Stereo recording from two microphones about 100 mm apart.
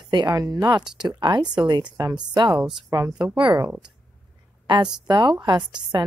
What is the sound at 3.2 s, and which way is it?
Speech, 50° right (ahead or behind).